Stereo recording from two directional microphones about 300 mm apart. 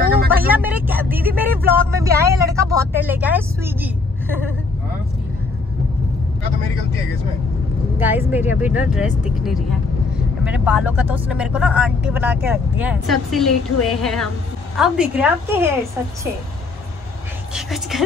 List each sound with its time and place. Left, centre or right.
0.0 s a sound: right
0.5 s speech: centre
8.0 s speech: centre
17.6 s speech: centre